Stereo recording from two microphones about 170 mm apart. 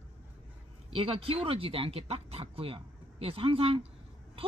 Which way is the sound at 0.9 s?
35° right (ahead or behind).